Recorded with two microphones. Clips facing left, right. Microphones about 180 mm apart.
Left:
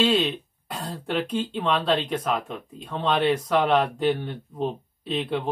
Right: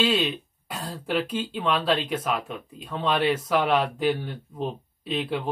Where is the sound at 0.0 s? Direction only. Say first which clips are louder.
Left 2 dB; 5° right (ahead or behind).